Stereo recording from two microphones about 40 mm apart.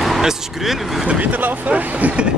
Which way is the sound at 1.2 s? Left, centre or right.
Right.